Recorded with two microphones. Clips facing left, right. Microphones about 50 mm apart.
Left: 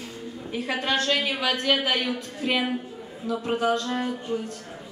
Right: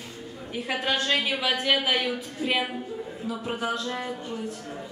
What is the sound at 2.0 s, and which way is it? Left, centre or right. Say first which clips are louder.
Speech: left 1 dB; centre.